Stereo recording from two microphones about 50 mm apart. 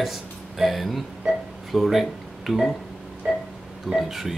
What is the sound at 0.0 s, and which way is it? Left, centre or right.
Speech, centre.